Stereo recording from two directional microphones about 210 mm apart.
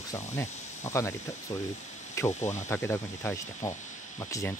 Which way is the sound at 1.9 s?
35° left (ahead or behind).